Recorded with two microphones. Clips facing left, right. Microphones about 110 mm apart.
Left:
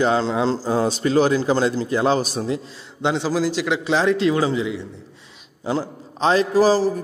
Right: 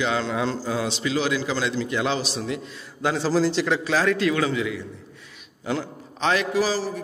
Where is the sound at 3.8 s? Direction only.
25° left (ahead or behind).